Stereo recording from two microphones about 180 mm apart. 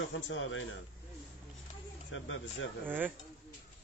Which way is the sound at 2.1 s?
90° left.